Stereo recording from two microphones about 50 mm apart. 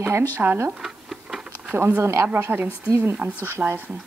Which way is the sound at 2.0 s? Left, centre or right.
Right.